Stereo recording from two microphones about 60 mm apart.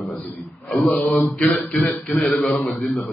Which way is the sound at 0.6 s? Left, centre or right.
Centre.